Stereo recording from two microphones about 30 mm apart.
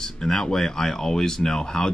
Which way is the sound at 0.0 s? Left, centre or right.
Centre.